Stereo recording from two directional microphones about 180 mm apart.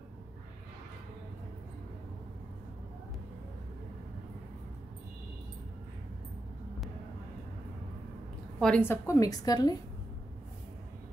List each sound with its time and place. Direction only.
8.5 s a woman's voice: 5° left (ahead or behind)